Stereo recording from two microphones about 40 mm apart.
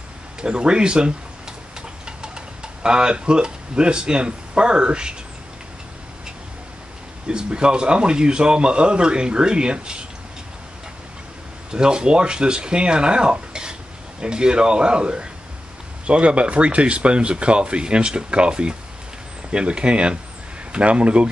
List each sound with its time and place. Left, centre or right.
0.4 s speech: right
1.8 s tick-tock: right
7.2 s speech: right
11.7 s speech: right